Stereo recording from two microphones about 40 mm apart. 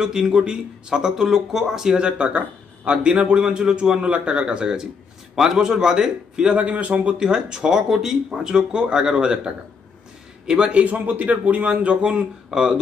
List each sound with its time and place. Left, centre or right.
0.0 s speech: centre
2.0 s speech: right
5.3 s speech: centre
6.5 s a man's voice: right
7.2 s a man's voice: right
12.4 s speech: centre